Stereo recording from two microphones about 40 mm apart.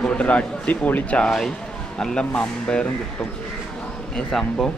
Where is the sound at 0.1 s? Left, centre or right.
Left.